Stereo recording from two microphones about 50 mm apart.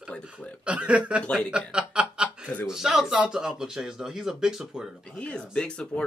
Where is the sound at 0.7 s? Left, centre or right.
Right.